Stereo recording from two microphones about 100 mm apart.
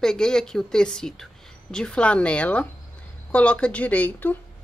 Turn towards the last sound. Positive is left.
turn(degrees=15)  # may be behind; listen again after turning